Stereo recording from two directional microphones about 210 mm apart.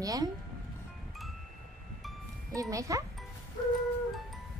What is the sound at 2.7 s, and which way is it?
Speech, 15° right (ahead or behind).